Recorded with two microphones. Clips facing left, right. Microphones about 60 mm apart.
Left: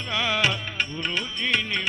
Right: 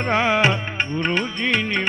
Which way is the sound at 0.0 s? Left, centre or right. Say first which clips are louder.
Right 7 dB; right.